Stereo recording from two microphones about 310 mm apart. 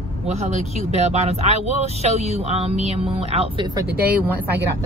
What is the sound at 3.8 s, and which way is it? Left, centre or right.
Speech, right.